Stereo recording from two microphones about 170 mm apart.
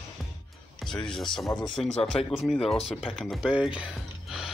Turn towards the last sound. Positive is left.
turn(degrees=-5)  # may be behind; listen again after turning